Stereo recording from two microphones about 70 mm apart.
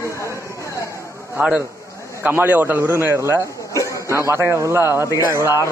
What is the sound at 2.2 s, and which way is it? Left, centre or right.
A man's voice, right.